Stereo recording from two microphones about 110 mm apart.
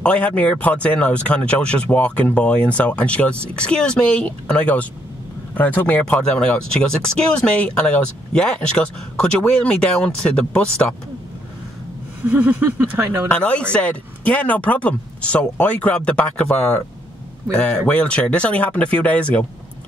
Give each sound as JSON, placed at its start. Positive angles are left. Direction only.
{"t": 0.0, "sound": "speech", "side_deg": 10}
{"t": 12.3, "sound": "speech", "side_deg": -15}
{"t": 13.3, "sound": "speech", "side_deg": 10}